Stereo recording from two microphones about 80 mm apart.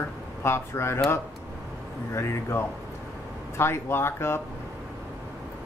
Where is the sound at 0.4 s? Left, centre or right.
Left.